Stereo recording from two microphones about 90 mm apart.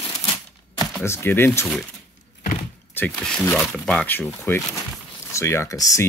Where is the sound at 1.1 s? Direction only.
25° left (ahead or behind).